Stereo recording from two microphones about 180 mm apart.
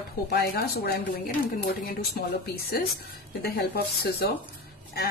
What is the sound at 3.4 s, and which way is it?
Speech, 60° left (ahead or behind).